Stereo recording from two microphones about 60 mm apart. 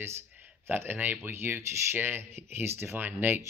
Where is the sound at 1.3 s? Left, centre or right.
Right.